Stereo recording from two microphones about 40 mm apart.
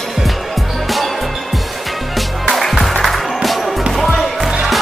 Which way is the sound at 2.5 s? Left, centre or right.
Centre.